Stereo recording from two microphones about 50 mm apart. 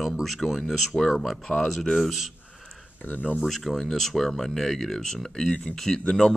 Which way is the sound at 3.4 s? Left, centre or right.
Centre.